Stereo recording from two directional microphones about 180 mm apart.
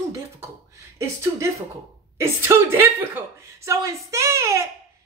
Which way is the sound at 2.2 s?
15° right (ahead or behind).